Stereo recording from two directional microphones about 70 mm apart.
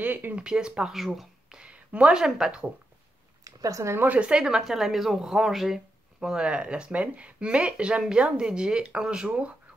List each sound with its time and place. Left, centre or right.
0.0 s speech: right
0.4 s speech: centre
1.6 s speech: centre
3.4 s a sound: right
3.9 s a woman's voice: right
4.2 s a woman's voice: centre
6.1 s speech: centre